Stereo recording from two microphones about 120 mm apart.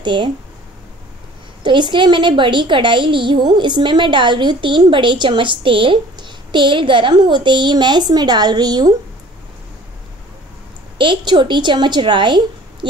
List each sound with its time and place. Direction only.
0.0 s speech: 40° right (ahead or behind)
1.6 s a woman's voice: 40° right (ahead or behind)
11.0 s a woman's voice: 40° right (ahead or behind)